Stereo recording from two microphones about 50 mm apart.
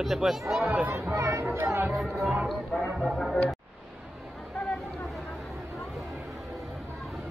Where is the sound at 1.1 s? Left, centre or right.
Right.